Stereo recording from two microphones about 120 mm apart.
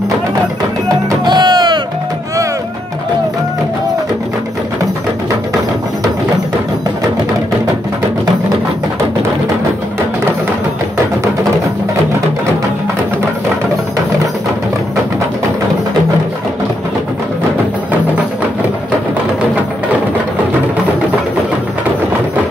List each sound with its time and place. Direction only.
1.2 s music: 35° right (ahead or behind)